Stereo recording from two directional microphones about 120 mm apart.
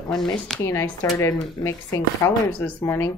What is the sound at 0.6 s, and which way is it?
A woman's voice, 20° left (ahead or behind).